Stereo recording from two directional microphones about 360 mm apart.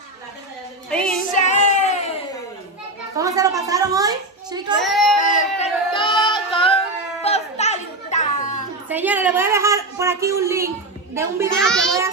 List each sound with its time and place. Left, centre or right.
0.8 s music: centre
1.3 s child singing: centre
3.2 s a sound: centre
4.8 s a child's voice: centre
5.2 s music: left
7.2 s a sound: centre
8.8 s a woman's voice: centre